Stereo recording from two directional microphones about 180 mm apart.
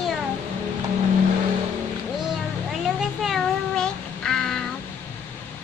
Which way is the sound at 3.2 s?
Centre (ahead or behind).